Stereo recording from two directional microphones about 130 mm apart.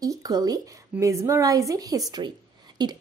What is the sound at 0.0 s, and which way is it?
A woman's voice, 30° right (ahead or behind).